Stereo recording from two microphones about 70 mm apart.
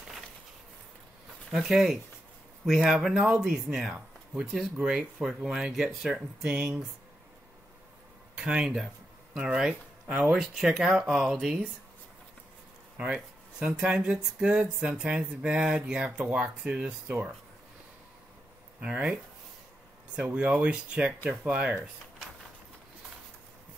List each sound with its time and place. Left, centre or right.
1.5 s speech: centre
8.4 s speech: centre
12.9 s speech: centre
18.8 s speech: centre
20.2 s speech: right